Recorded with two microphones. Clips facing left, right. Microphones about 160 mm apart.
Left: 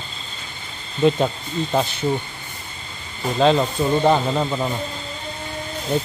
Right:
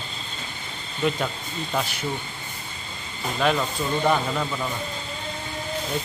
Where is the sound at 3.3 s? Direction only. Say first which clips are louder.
Left 6 dB; 30° left (ahead or behind).